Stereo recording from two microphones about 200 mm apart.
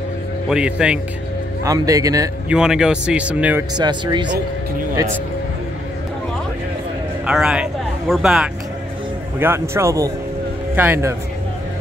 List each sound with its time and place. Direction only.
0.5 s speech: 5° right (ahead or behind)
1.6 s speech: 15° right (ahead or behind)
2.5 s speech: 5° right (ahead or behind)
3.7 s speech: 20° right (ahead or behind)
7.2 s speech: 5° right (ahead or behind)